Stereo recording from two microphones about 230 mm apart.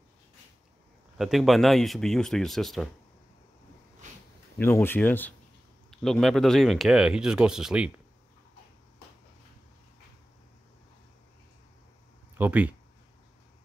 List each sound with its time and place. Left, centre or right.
1.1 s speech: centre
4.0 s a sound: right
4.6 s speech: centre
12.4 s speech: centre